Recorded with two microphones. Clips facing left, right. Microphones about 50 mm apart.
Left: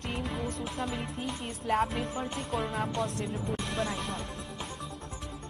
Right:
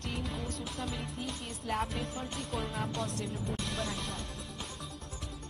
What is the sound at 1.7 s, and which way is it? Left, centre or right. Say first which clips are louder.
A woman's voice: left 6 dB; centre.